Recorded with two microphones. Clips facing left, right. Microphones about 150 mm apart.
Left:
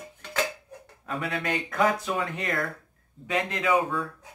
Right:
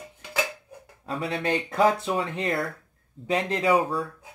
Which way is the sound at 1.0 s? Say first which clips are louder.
Right 2 dB; 30° right (ahead or behind).